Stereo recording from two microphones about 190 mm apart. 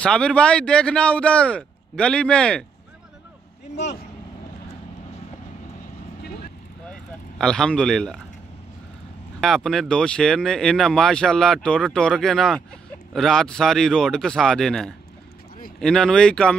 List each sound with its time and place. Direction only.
0.0 s speech: 5° left (ahead or behind)
3.7 s speech: 35° left (ahead or behind)
6.9 s vehicle: 5° left (ahead or behind)
9.4 s speech: centre (ahead or behind)